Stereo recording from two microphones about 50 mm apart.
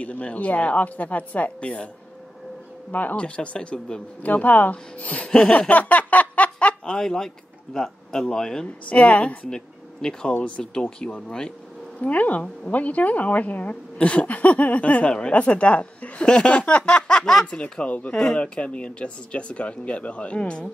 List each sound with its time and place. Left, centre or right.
0.0 s speech: left
2.9 s speech: left
3.2 s speech: left
4.2 s speech: left
5.7 s a sound: left
6.9 s speech: centre
8.8 s speech: left
12.0 s speech: left
17.2 s speech: centre
17.6 s speech: left